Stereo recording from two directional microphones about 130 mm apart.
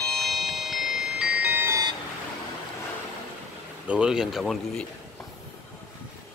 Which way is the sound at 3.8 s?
5° right (ahead or behind).